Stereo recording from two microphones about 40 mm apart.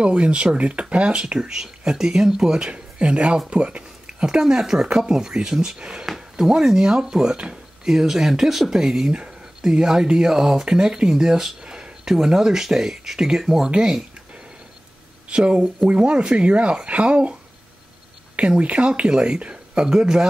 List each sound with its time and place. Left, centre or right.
0.0 s speech: right
1.6 s speech: centre
2.7 s speech: right
15.2 s speech: right
18.6 s speech: right